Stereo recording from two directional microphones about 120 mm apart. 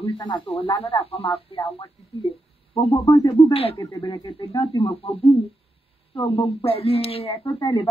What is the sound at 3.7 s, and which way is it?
Speech, 30° left (ahead or behind).